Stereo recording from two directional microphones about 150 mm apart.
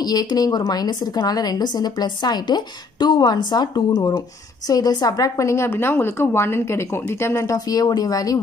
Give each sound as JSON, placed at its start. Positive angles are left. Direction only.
{"t": 0.0, "sound": "a woman's voice", "side_deg": 25}